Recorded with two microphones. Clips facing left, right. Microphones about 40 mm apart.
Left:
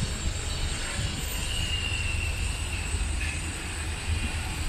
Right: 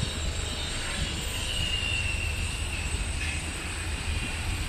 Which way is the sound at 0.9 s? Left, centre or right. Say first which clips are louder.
Right 1 dB; right.